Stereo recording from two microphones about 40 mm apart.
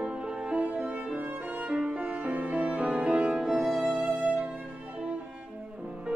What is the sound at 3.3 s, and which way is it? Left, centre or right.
Music, centre.